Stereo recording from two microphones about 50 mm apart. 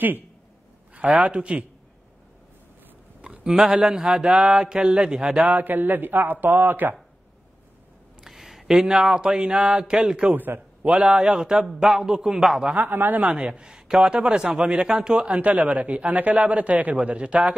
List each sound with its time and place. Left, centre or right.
0.9 s a man's voice: right
3.2 s mantra: centre
5.5 s a man's voice: right
8.2 s a sound: centre
10.3 s a man's voice: right
10.8 s mantra: centre
12.7 s a man's voice: right
13.2 s mantra: right
15.3 s a man's voice: right